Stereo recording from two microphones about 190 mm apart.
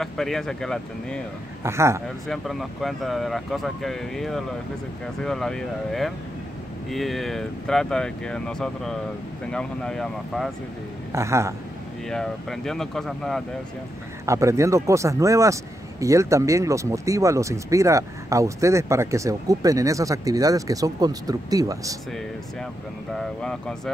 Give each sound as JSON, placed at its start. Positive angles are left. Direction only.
{"t": 0.0, "sound": "speech", "side_deg": 0}
{"t": 1.6, "sound": "speech", "side_deg": -15}
{"t": 2.2, "sound": "speech", "side_deg": 0}
{"t": 11.1, "sound": "speech", "side_deg": -15}
{"t": 12.1, "sound": "speech", "side_deg": 0}
{"t": 14.2, "sound": "speech", "side_deg": -15}
{"t": 23.1, "sound": "speech", "side_deg": 5}